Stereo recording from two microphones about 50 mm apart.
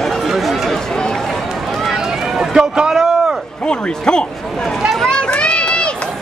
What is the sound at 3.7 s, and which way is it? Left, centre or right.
Speech, centre.